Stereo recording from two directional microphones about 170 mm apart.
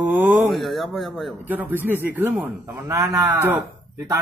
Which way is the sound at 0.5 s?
Centre (ahead or behind).